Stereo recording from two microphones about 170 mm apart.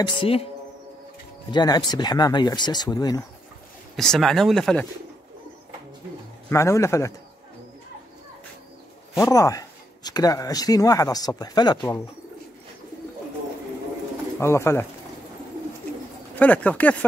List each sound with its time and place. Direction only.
0.0 s speech: 30° left (ahead or behind)
1.5 s speech: 25° left (ahead or behind)
3.9 s speech: centre (ahead or behind)
6.5 s a man's voice: 15° left (ahead or behind)
9.2 s speech: 20° left (ahead or behind)
14.4 s a man's voice: 15° left (ahead or behind)
16.3 s a man's voice: 10° left (ahead or behind)